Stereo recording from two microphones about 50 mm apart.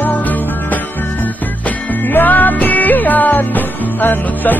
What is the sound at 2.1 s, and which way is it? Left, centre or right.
Music, left.